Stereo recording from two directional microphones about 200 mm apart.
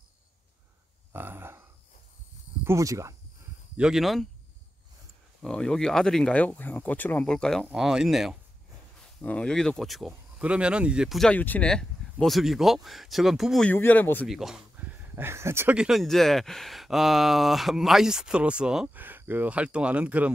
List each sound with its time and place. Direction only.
1.1 s speech: 10° right (ahead or behind)
2.6 s speech: 15° right (ahead or behind)
3.7 s speech: 5° right (ahead or behind)
5.4 s speech: centre (ahead or behind)
14.2 s speech: centre (ahead or behind)